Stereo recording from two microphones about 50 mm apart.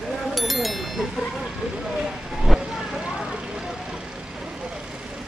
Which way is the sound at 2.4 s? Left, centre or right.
Centre.